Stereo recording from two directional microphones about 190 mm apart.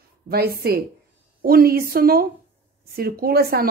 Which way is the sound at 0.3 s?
55° right (ahead or behind).